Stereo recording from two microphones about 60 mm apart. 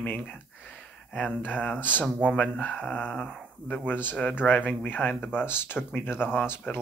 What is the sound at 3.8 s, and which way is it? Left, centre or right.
Speech, left.